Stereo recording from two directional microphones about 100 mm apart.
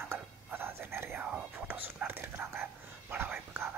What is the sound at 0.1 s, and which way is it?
Whispering, 20° right (ahead or behind).